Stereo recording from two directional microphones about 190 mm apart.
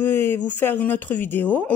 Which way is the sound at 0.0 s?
10° left (ahead or behind).